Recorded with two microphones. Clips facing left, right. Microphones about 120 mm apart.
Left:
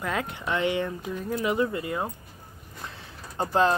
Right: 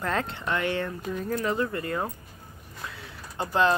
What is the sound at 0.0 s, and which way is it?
Speech, 10° left (ahead or behind).